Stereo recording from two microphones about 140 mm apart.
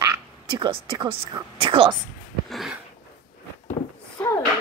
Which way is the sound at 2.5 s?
Centre (ahead or behind).